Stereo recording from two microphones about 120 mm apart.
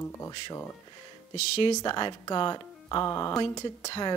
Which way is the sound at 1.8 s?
40° left (ahead or behind).